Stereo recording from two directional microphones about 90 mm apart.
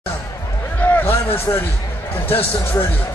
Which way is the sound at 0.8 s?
15° left (ahead or behind).